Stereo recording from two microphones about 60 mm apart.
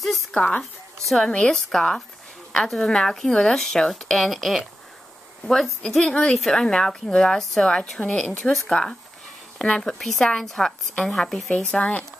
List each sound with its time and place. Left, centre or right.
0.3 s speech: centre
1.0 s a woman's voice: centre
11.8 s speech: centre